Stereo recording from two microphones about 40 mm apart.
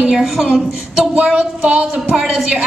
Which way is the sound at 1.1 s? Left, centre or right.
Right.